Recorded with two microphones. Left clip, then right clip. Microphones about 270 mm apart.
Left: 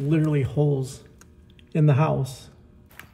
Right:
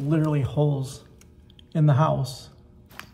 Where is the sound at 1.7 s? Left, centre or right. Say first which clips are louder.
Even; left.